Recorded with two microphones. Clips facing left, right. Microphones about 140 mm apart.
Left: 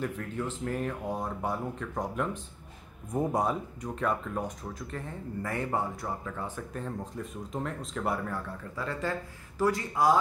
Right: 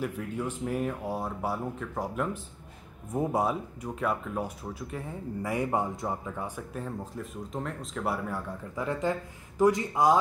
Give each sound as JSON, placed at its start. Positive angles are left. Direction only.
{"t": 0.0, "sound": "speech", "side_deg": -10}
{"t": 8.7, "sound": "speech", "side_deg": -20}